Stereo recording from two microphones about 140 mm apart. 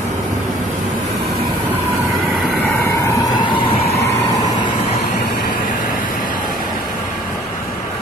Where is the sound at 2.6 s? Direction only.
15° left (ahead or behind).